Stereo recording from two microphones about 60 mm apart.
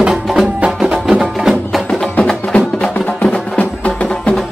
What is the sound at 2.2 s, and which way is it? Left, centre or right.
Music, centre.